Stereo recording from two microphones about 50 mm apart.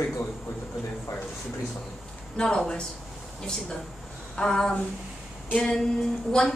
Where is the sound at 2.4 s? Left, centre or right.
Centre.